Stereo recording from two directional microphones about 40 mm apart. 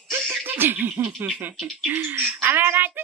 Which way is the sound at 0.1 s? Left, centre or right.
Right.